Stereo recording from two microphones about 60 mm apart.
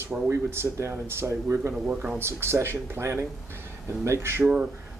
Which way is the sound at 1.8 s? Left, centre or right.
Right.